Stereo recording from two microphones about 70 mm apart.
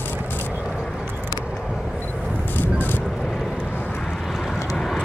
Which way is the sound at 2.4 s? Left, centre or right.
Left.